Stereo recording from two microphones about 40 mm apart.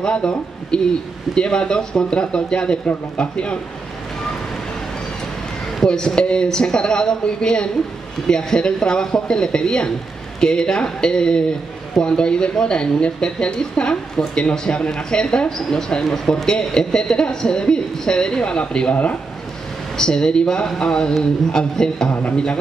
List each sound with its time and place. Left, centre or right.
0.0 s a man's voice: left
5.9 s speech: centre
20.0 s speech: centre